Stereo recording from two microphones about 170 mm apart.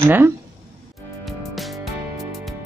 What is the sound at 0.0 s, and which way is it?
Speech, 10° right (ahead or behind).